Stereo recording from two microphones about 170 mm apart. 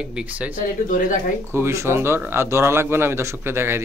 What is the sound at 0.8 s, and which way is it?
Speech, 50° left (ahead or behind).